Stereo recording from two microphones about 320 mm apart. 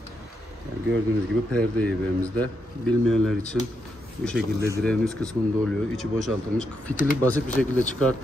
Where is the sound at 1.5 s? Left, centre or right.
Centre.